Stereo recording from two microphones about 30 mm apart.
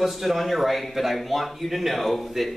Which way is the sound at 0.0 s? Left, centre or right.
Centre.